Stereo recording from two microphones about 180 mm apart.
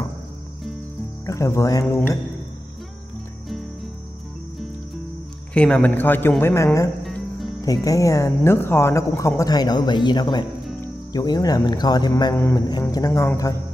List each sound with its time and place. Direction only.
1.2 s a woman's voice: 15° left (ahead or behind)
5.5 s a woman's voice: 5° left (ahead or behind)
7.1 s music: centre (ahead or behind)
7.6 s speech: 20° left (ahead or behind)
12.4 s a woman's voice: 10° left (ahead or behind)